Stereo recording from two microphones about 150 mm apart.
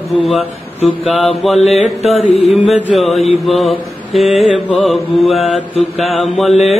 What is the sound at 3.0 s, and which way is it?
Mantra, centre (ahead or behind).